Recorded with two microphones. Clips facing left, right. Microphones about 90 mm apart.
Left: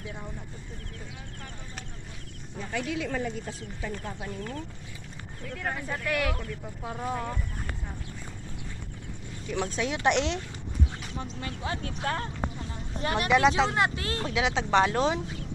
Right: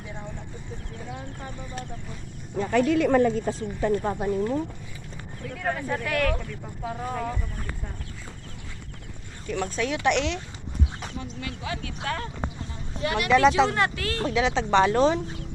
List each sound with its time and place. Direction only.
2.5 s speech: 65° right (ahead or behind)
3.8 s speech: 55° right (ahead or behind)
4.4 s speech: 20° right (ahead or behind)
5.5 s speech: centre (ahead or behind)
9.5 s speech: 15° left (ahead or behind); by 13.3 s 35° left (ahead or behind)
13.7 s speech: 20° left (ahead or behind)
14.3 s speech: 5° left (ahead or behind)